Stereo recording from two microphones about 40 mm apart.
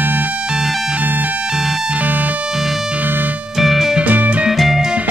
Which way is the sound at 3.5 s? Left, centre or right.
Centre.